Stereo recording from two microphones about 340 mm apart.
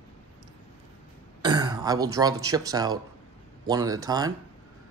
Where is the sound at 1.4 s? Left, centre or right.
Centre.